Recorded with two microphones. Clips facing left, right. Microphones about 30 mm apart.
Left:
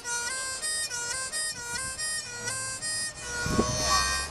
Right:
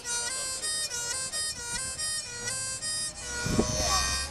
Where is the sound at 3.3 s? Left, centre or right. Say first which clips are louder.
Left 1 dB; centre.